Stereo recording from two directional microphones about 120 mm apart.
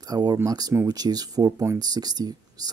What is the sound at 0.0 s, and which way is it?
Speech, 30° right (ahead or behind).